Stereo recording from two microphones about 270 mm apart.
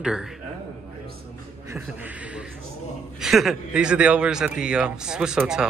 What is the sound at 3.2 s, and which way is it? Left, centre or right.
Speech, centre.